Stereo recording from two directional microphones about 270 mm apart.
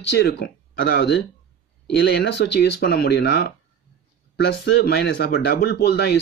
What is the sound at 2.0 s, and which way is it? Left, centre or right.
Speech, left.